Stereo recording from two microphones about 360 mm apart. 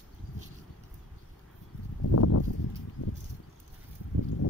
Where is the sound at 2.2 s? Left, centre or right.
Left.